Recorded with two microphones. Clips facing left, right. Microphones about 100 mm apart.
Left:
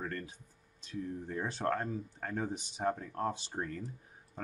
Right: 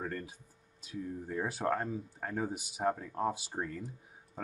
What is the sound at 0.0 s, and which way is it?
Speech, 10° right (ahead or behind).